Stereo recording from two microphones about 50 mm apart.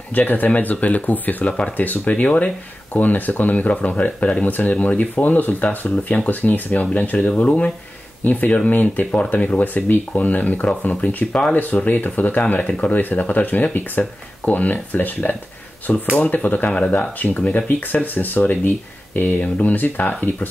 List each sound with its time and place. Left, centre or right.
0.1 s speech: left